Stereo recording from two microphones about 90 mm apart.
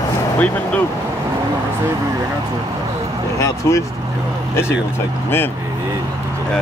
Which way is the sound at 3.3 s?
35° left (ahead or behind).